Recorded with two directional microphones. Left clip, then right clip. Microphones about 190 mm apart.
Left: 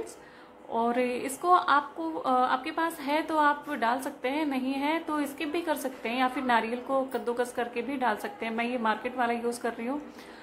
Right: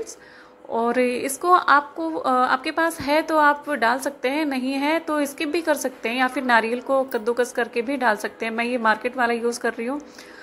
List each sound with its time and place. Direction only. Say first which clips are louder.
0.7 s speech: right 6 dB; 25° right (ahead or behind)